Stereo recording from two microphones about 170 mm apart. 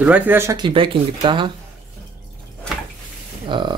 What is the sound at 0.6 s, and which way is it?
Speech, 30° right (ahead or behind).